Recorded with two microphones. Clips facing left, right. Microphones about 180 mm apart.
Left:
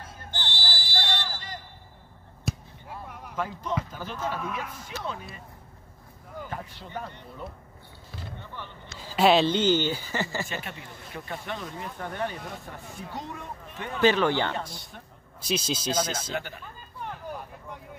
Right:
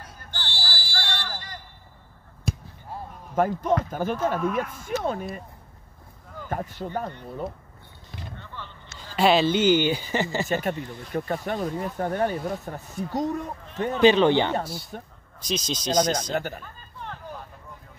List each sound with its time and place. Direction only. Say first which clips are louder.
0.0 s a sound: left 1 dB; 20° left (ahead or behind)
2.5 s basketball bounce: right 2 dB; centre (ahead or behind)
3.1 s a sound: left 1 dB; 85° left
3.3 s speech: right 9 dB; 50° right (ahead or behind)
6.5 s speech: right 10 dB; 45° right (ahead or behind)
8.4 s vehicle: even; 15° left (ahead or behind)
8.9 s speech: even; centre (ahead or behind); by 10.5 s 20° right (ahead or behind)
10.5 s speech: right 11 dB; 45° right (ahead or behind)
13.9 s speech: right 5 dB; 20° right (ahead or behind)
14.6 s speech: right 6 dB; 5° right (ahead or behind)
15.4 s speech: even; 5° left (ahead or behind)
16.3 s speech: right 5 dB; 45° right (ahead or behind)